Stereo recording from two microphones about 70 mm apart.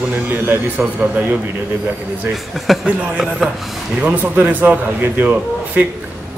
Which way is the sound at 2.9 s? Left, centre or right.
Centre.